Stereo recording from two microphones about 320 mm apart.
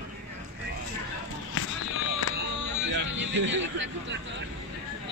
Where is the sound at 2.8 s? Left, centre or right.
Right.